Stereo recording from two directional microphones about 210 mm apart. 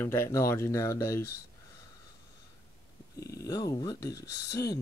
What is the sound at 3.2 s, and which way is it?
Speech, 15° left (ahead or behind).